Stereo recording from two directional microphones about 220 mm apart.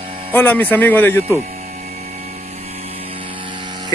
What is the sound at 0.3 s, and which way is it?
Speech, 10° left (ahead or behind).